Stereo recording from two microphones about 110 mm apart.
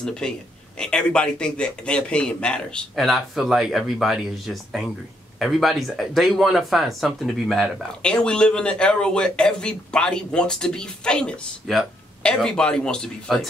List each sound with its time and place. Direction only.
0.0 s speech: 5° left (ahead or behind)